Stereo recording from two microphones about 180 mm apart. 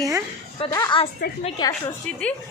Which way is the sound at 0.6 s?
25° left (ahead or behind).